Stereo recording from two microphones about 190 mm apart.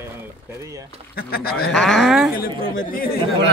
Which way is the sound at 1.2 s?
55° left (ahead or behind).